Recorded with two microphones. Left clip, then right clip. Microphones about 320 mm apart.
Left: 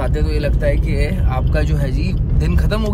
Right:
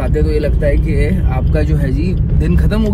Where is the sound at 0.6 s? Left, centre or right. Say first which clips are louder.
Right 3 dB; left.